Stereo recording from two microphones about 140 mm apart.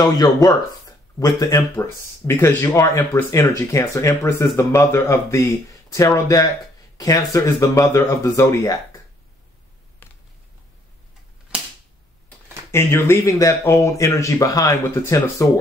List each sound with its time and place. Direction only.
0.0 s speech: 25° left (ahead or behind)
12.3 s speech: 20° left (ahead or behind)